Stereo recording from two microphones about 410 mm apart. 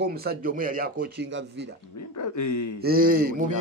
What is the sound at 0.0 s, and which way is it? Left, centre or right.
Speech, right.